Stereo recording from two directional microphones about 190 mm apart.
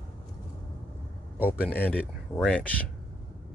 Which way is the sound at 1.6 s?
10° left (ahead or behind).